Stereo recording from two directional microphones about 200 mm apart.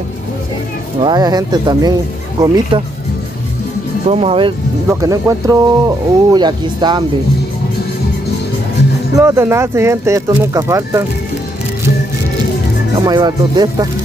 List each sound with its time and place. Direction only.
1.0 s speech: 20° right (ahead or behind)
4.1 s speech: 30° right (ahead or behind)
4.8 s speech: 15° right (ahead or behind)
9.1 s speech: 15° right (ahead or behind)
13.0 s speech: 20° right (ahead or behind)